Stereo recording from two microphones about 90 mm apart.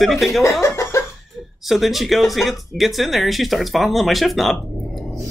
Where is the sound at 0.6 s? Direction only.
30° left (ahead or behind).